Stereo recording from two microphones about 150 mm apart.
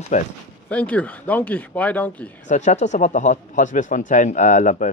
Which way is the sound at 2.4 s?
55° left (ahead or behind).